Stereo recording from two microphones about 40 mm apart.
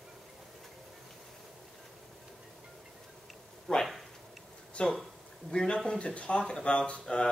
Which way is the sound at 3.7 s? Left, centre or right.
Centre.